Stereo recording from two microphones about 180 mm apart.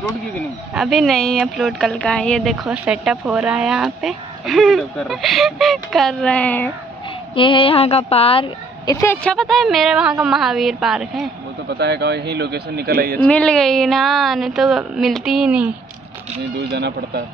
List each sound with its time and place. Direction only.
0.7 s a woman's voice: centre (ahead or behind)
7.3 s a woman's voice: 30° left (ahead or behind)
8.9 s a woman's voice: 15° left (ahead or behind); by 11.2 s centre (ahead or behind)
11.7 s speech: 70° right (ahead or behind)
13.3 s a woman's voice: 5° left (ahead or behind)
16.5 s speech: 65° right (ahead or behind)